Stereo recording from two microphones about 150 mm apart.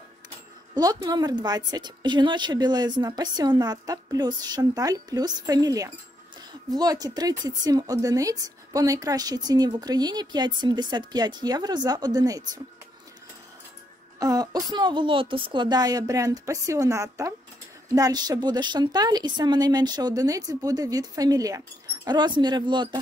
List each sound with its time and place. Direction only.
0.7 s a woman's voice: 25° right (ahead or behind)
14.2 s a woman's voice: 25° right (ahead or behind)